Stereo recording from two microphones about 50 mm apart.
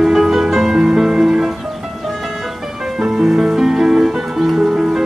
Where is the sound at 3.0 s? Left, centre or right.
Centre.